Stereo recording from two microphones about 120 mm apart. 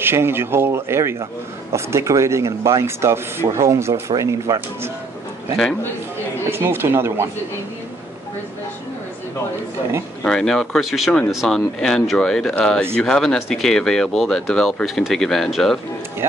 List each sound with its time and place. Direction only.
0.0 s speech: 20° right (ahead or behind)
6.5 s speech: 20° right (ahead or behind)
10.2 s speech: 5° left (ahead or behind)